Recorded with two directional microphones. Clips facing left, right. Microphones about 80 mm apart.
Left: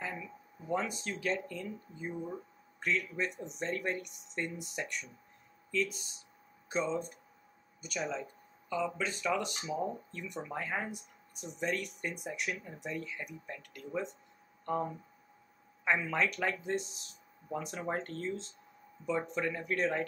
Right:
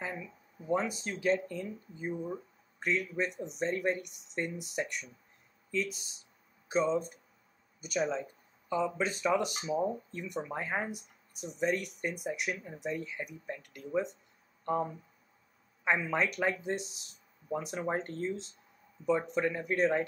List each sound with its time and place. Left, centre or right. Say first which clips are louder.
0.7 s speech: right 3 dB; centre
14.6 s a sound: right 2 dB; centre
15.8 s speech: right 1 dB; centre